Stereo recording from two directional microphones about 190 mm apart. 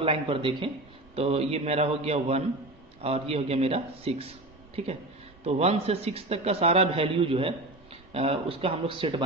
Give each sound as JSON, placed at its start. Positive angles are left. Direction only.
{"t": 0.0, "sound": "a man's voice", "side_deg": -30}